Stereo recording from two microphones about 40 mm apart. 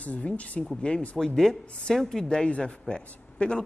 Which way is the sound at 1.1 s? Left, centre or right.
Centre.